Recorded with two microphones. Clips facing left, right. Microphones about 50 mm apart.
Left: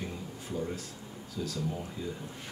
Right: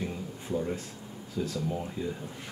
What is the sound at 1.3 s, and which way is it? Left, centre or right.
Speech, right.